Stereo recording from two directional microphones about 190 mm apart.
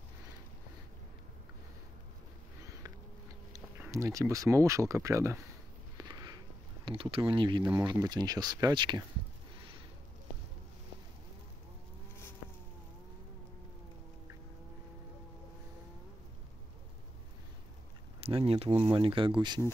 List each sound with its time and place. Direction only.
3.5 s speech: 15° right (ahead or behind)
5.9 s a sound: 20° right (ahead or behind)
7.6 s speech: 20° right (ahead or behind)
18.2 s speech: 30° right (ahead or behind)